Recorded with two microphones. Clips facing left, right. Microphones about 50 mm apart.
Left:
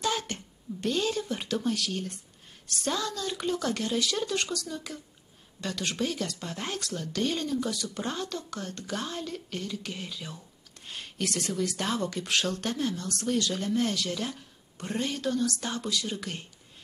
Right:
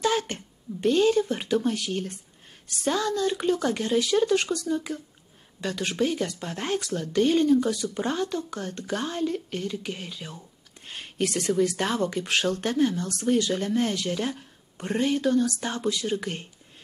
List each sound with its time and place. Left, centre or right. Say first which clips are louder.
0.3 s speech: right 2 dB; centre
10.9 s a sound: right 6 dB; centre
11.2 s speech: right 7 dB; centre
12.3 s speech: right 2 dB; centre
12.5 s speech: right 7 dB; centre